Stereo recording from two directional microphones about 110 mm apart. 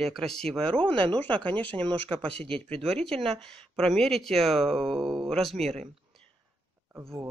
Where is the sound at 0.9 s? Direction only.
50° right (ahead or behind).